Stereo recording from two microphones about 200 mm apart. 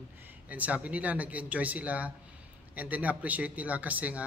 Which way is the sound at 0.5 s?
5° right (ahead or behind).